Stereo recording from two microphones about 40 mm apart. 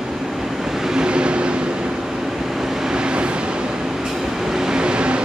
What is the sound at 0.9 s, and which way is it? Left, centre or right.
Vehicle, right.